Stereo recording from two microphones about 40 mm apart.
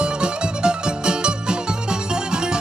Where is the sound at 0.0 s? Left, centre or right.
Right.